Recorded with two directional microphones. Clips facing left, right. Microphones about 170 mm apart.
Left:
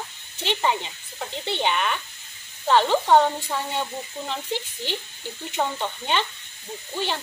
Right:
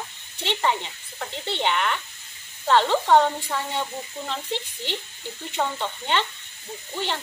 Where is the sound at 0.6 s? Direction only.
10° left (ahead or behind).